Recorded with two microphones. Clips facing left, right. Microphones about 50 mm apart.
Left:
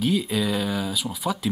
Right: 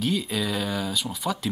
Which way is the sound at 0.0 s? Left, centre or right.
Centre.